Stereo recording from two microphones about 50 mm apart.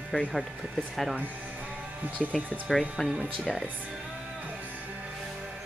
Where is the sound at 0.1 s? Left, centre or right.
Centre.